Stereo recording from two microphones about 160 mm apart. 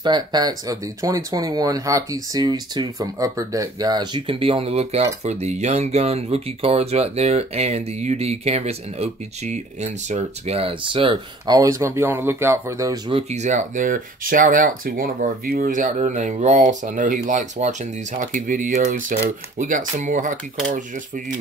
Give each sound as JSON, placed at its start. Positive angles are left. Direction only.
{"t": 0.0, "sound": "speech", "side_deg": -25}
{"t": 13.1, "sound": "speech", "side_deg": -45}